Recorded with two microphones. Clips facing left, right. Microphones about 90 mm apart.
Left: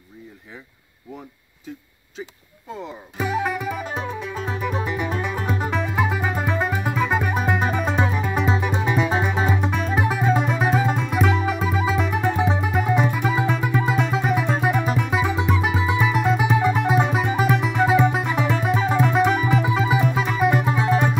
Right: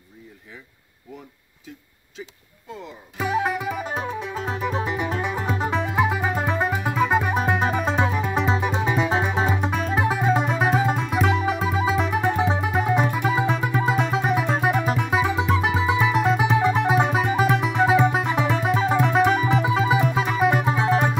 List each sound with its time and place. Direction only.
3.4 s music: 10° right (ahead or behind); by 21.0 s 25° right (ahead or behind)